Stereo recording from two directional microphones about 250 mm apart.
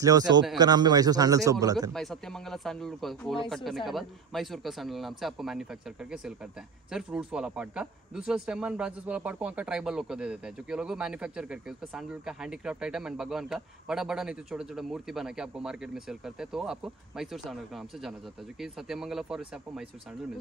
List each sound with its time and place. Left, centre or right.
0.0 s a man's voice: centre
2.0 s speech: centre